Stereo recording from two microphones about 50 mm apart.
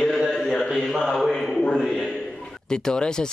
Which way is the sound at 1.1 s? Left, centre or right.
Centre.